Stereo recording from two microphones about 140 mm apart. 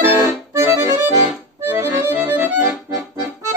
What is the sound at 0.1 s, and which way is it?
Accordion, 15° right (ahead or behind).